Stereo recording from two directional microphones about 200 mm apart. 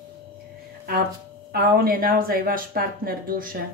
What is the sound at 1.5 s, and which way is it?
Speech, 45° right (ahead or behind).